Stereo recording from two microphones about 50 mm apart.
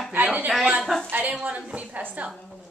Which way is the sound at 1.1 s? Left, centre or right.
Right.